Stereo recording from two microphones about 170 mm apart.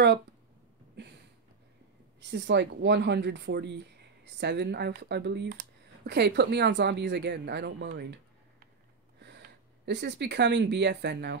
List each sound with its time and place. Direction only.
2.1 s a woman's voice: 90° right; by 8.2 s 70° right (ahead or behind)
9.2 s speech: 90° right